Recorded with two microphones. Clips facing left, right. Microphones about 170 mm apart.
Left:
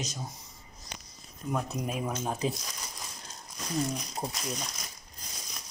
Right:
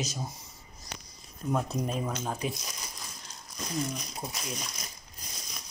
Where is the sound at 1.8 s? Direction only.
10° left (ahead or behind).